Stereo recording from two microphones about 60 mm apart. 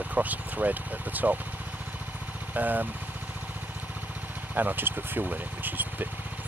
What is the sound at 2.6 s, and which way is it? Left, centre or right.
Speech, right.